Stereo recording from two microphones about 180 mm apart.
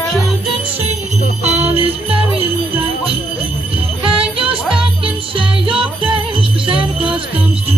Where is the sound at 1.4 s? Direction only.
35° right (ahead or behind).